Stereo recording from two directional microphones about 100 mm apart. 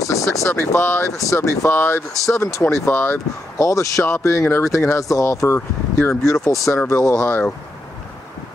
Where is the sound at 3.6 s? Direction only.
35° left (ahead or behind).